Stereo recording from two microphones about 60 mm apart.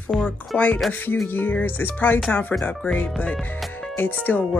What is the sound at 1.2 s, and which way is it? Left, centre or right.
Speech, left.